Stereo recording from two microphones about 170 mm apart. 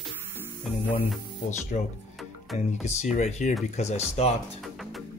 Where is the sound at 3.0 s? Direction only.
45° left (ahead or behind).